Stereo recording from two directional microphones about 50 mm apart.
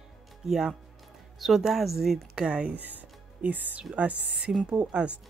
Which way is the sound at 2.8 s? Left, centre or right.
Right.